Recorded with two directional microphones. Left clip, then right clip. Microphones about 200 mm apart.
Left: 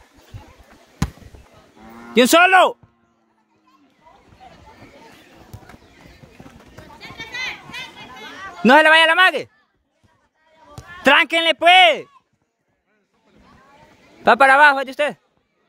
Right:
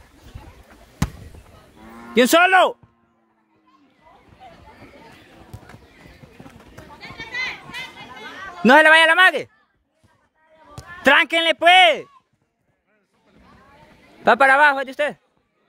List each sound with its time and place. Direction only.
2.1 s speech: 10° left (ahead or behind)
5.5 s horse: 5° left (ahead or behind)
7.0 s children playing: 55° left (ahead or behind)
8.5 s speech: 5° left (ahead or behind)
11.0 s speech: 10° left (ahead or behind)
14.2 s speech: 10° left (ahead or behind)